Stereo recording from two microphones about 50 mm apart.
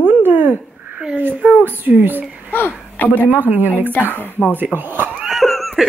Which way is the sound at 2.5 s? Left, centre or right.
Left.